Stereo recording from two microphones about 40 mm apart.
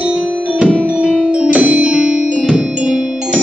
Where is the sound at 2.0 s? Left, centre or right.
Centre.